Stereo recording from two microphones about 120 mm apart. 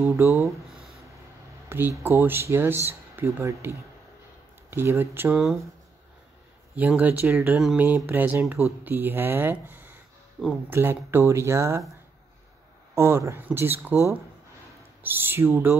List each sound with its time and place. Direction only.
0.1 s speech: 20° right (ahead or behind)
1.7 s speech: 20° right (ahead or behind)
5.3 s speech: centre (ahead or behind)
6.7 s speech: 10° right (ahead or behind)
10.4 s speech: centre (ahead or behind)
10.7 s speech: 20° right (ahead or behind)
12.9 s speech: 20° right (ahead or behind)
15.0 s speech: 15° right (ahead or behind)